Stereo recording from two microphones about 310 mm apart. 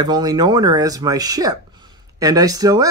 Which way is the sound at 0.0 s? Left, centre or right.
Centre.